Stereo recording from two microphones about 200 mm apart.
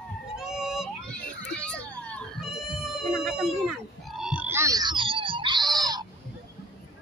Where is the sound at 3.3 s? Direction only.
Centre (ahead or behind); by 6.0 s 20° right (ahead or behind).